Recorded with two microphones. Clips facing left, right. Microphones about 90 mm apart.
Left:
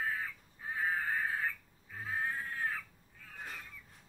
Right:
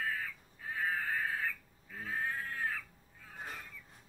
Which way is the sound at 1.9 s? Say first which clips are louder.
Left 1 dB; 5° left (ahead or behind).